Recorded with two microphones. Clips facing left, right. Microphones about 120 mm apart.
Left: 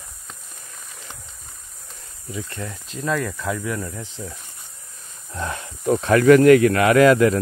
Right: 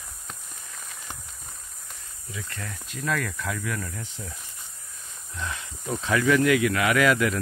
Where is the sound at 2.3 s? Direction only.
30° left (ahead or behind).